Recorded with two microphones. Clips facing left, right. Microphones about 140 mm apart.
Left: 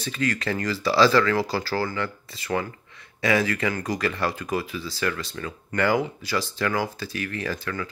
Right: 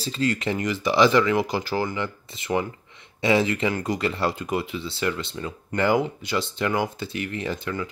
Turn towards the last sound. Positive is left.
turn(degrees=-20)  # may be behind; listen again after turning